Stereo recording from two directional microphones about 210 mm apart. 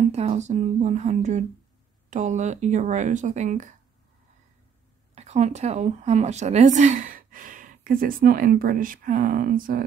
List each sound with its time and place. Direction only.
0.1 s speech: 30° right (ahead or behind)
5.1 s a woman's voice: 30° right (ahead or behind)